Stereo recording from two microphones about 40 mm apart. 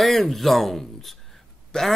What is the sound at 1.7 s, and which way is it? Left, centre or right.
Speech, centre.